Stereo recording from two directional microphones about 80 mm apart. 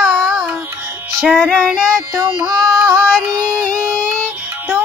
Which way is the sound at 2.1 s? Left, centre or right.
Right.